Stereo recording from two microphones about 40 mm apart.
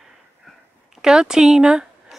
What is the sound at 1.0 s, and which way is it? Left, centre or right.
Speech, centre.